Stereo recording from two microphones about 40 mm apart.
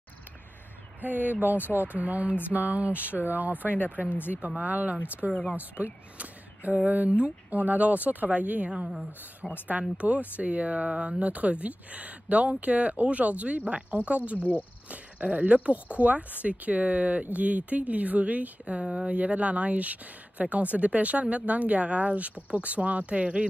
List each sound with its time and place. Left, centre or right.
1.0 s speech: right
3.1 s speech: left
3.3 s speech: right
3.7 s speech: left
4.6 s speech: right
5.3 s speech: left
6.1 s a sound: right
6.9 s speech: right
9.7 s speech: right
19.0 s speech: right